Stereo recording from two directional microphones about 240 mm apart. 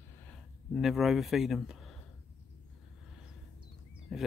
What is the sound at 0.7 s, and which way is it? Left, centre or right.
Speech, centre.